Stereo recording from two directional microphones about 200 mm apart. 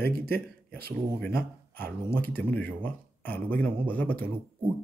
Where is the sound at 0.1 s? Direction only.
50° right (ahead or behind).